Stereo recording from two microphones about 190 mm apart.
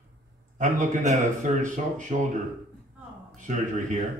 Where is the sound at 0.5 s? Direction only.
40° right (ahead or behind).